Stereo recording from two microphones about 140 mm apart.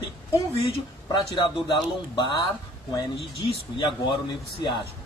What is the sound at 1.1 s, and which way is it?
Speech, 30° left (ahead or behind).